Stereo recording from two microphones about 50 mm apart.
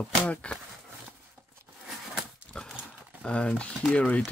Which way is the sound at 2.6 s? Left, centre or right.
Centre.